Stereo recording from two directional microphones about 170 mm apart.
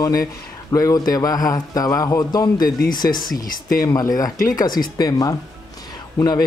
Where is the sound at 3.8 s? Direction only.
20° left (ahead or behind).